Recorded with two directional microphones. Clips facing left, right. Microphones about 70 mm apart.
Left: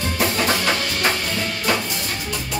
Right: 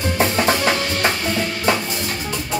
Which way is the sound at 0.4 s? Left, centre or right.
Right.